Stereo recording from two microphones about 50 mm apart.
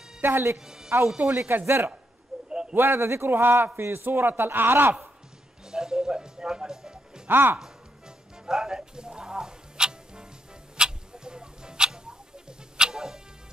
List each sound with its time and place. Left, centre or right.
0.3 s speech: right
0.7 s speech: centre
1.5 s a man's voice: right
2.3 s a sound: centre
2.7 s a man's voice: right
3.3 s a man's voice: right
5.7 s music: centre
7.2 s speech: right
8.5 s music: centre
10.8 s goat: centre